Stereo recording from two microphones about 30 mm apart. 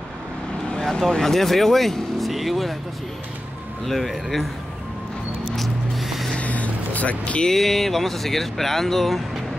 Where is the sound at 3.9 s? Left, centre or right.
Centre.